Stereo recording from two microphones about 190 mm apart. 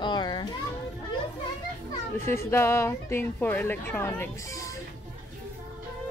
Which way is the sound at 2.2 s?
15° left (ahead or behind).